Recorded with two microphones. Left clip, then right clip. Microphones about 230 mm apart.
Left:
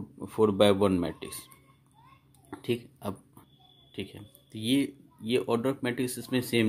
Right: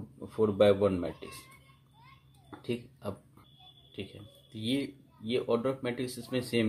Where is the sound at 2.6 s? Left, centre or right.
Left.